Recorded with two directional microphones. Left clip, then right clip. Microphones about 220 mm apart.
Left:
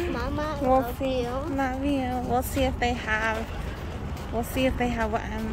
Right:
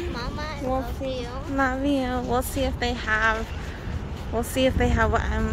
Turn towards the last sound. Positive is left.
turn(degrees=-5)  # may be behind; listen again after turning